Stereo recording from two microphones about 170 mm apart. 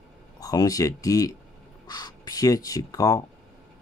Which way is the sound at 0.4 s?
20° left (ahead or behind).